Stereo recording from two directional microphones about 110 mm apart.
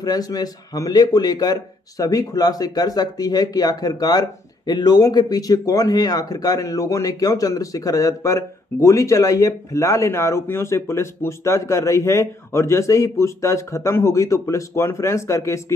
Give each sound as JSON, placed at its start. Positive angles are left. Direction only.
{"t": 0.0, "sound": "speech", "side_deg": 35}